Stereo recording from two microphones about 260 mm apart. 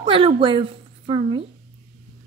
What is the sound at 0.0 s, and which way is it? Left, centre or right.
Speech, centre.